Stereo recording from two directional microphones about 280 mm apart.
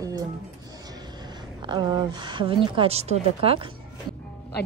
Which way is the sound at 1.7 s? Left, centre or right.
Centre.